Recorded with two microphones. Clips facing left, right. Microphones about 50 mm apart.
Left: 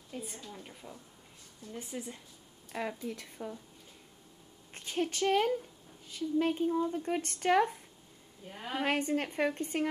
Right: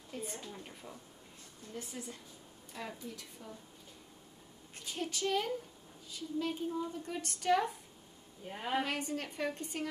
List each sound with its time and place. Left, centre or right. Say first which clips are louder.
0.1 s a woman's voice: even; centre
1.8 s speech: left 3 dB; left
2.7 s speech: left 7 dB; left
4.7 s a woman's voice: left 6 dB; left
8.5 s a woman's voice: right 2 dB; centre
8.8 s a woman's voice: left 7 dB; left